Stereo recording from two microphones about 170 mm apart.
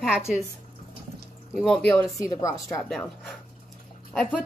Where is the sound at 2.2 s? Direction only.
20° left (ahead or behind).